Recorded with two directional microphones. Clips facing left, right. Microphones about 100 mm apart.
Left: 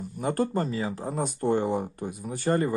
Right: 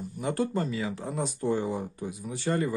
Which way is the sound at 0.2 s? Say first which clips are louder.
Left 2 dB; 45° left (ahead or behind).